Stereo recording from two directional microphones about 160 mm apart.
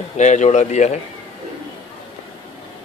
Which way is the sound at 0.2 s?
45° left (ahead or behind).